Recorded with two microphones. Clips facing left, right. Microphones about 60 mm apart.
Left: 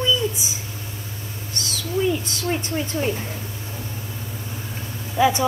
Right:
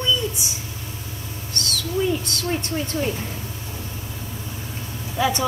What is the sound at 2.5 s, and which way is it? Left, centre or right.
Speech, centre.